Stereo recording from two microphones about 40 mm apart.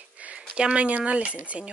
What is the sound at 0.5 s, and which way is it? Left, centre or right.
Speech, right.